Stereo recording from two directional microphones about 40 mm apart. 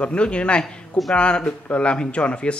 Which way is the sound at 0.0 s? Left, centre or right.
Left.